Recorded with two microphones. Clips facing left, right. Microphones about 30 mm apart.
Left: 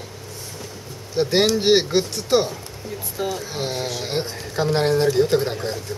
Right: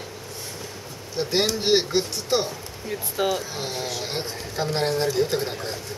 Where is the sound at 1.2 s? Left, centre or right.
Left.